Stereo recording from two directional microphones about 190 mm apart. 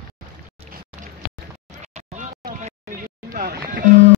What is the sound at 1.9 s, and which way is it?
Music, 40° right (ahead or behind).